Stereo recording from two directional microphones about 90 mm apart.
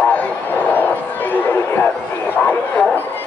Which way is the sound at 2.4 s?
15° left (ahead or behind).